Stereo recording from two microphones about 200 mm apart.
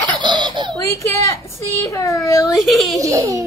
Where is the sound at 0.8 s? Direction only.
15° left (ahead or behind).